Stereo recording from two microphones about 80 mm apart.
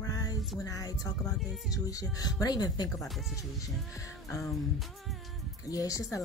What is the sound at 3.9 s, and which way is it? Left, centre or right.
Music, left.